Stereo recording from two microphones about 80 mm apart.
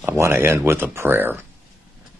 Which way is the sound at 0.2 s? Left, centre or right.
Right.